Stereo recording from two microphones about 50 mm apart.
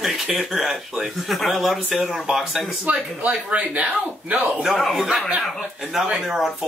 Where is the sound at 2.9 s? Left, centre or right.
Right.